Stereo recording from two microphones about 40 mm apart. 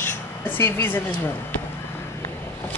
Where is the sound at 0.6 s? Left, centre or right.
Left.